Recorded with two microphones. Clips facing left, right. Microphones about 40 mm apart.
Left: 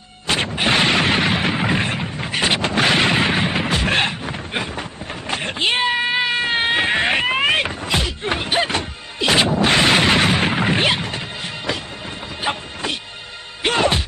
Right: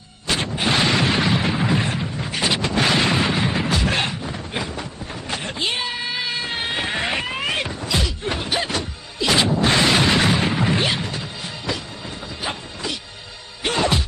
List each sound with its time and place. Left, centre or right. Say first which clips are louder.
0.6 s a sound: left 2 dB; left
5.3 s cat: left 5 dB; left
9.6 s smash: left 2 dB; left
13.6 s music: left 3 dB; left